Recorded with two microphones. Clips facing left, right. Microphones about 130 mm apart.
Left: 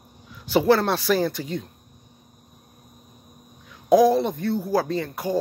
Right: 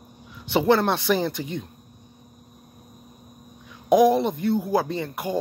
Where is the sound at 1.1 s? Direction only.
Centre (ahead or behind).